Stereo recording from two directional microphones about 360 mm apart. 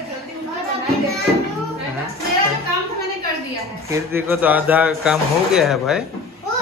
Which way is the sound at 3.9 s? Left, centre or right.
Centre.